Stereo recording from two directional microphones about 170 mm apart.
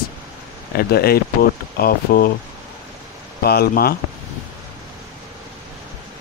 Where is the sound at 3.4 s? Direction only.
65° left (ahead or behind).